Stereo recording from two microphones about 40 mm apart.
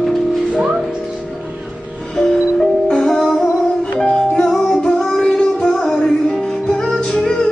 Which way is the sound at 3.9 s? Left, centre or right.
Left.